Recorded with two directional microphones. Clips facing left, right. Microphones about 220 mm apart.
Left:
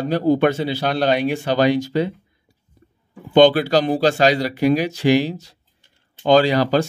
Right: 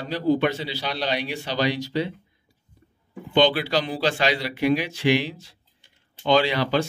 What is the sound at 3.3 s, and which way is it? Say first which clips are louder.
A man's voice: left 7 dB; 45° left (ahead or behind).